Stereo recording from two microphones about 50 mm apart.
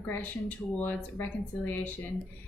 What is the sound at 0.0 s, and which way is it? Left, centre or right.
A woman's voice, left.